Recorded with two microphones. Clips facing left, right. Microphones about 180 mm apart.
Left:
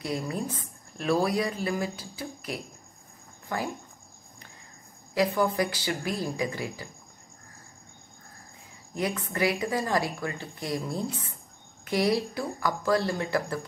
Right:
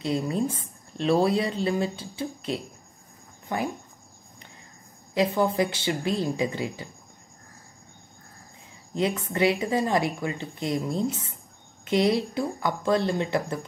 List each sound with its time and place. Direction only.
0.0 s speech: 25° right (ahead or behind)
5.1 s speech: 25° right (ahead or behind)
8.9 s speech: 25° right (ahead or behind)